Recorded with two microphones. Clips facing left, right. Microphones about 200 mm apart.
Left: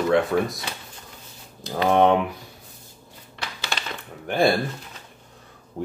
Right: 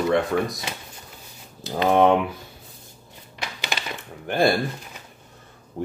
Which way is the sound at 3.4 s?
15° right (ahead or behind).